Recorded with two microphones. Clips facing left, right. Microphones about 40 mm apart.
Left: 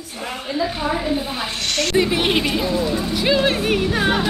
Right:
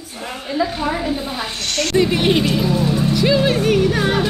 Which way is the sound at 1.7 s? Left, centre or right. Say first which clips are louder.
Right 2 dB; centre.